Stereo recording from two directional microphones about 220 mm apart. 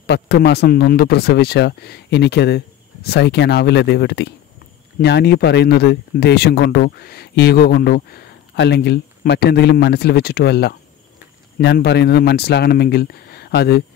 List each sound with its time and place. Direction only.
0.0 s speech: 50° left (ahead or behind)